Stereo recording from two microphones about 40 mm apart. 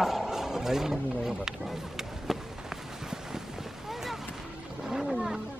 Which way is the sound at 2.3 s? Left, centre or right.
Centre.